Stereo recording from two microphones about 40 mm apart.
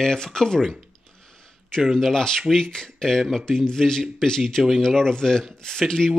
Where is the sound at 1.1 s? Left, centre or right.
Centre.